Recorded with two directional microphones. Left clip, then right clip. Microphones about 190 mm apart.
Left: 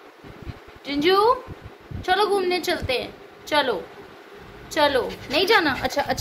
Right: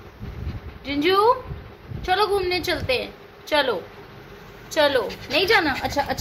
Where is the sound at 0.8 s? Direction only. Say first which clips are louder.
Even; 5° left (ahead or behind).